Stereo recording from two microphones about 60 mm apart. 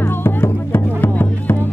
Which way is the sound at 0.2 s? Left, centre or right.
Left.